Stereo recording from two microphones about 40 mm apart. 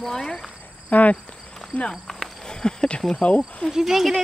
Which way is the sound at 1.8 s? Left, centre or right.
Centre.